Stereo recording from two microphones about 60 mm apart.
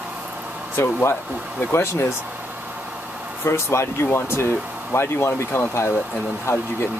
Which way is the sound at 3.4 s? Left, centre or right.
Left.